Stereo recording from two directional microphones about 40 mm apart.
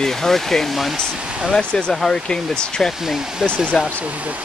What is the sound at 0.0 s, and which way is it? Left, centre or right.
Speech, centre.